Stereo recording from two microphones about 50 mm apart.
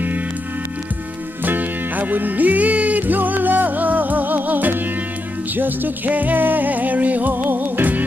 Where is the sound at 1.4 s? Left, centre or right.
Right.